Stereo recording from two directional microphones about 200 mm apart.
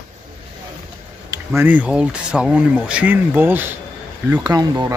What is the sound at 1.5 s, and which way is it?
Speech, 10° right (ahead or behind).